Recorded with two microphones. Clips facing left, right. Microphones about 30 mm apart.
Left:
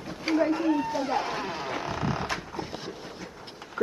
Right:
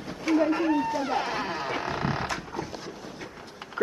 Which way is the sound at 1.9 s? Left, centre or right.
Right.